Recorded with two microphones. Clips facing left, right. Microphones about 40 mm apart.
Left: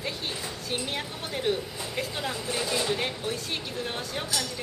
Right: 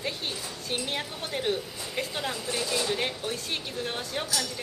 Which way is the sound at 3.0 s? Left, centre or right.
Centre.